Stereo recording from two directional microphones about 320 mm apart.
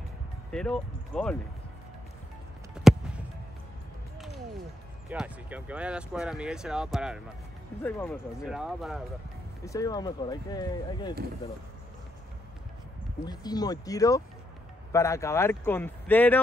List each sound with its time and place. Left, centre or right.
0.5 s speech: centre
2.7 s a sound: centre
5.1 s speech: centre
9.7 s speech: centre
13.2 s speech: centre